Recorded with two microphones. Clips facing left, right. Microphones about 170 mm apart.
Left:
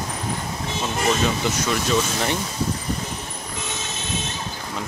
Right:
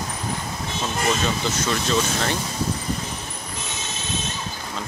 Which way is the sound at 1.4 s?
10° left (ahead or behind).